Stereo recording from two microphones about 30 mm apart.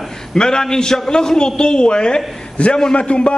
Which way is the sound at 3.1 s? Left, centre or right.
Left.